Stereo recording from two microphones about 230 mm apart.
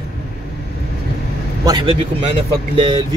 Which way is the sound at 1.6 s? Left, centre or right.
Right.